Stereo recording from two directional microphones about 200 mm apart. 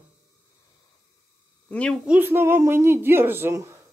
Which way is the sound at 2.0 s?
10° right (ahead or behind).